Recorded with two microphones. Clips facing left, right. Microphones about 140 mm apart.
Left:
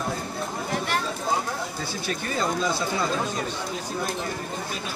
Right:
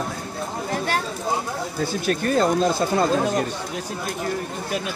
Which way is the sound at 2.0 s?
55° right (ahead or behind).